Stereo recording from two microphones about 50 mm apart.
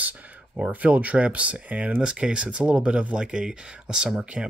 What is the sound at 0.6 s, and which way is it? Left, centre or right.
Speech, right.